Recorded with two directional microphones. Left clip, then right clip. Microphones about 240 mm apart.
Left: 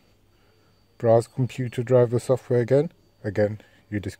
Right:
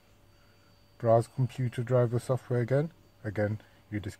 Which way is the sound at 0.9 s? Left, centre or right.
Left.